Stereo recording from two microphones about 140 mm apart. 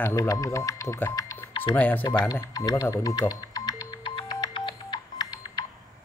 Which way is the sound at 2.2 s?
25° left (ahead or behind).